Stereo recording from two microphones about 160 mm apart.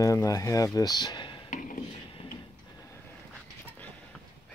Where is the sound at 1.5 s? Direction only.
50° left (ahead or behind).